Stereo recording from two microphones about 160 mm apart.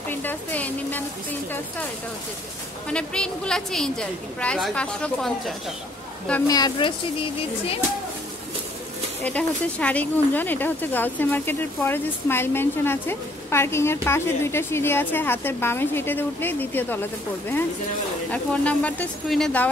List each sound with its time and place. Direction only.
0.1 s speech: 10° left (ahead or behind)
2.9 s a woman's voice: 5° left (ahead or behind)
6.4 s speech: 25° left (ahead or behind)
9.2 s speech: 10° left (ahead or behind)
18.3 s speech: 10° left (ahead or behind)